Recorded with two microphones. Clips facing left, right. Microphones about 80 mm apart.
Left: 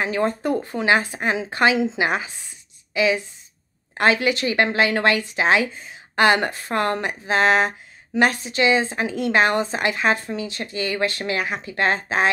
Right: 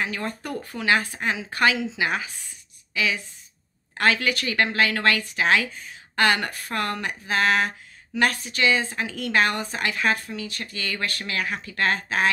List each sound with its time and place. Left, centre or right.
0.0 s a woman's voice: left